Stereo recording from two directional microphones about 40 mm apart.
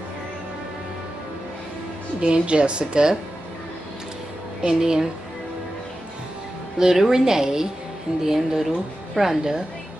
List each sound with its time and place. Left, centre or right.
2.1 s a woman's voice: right
4.6 s speech: centre
6.8 s a woman's voice: centre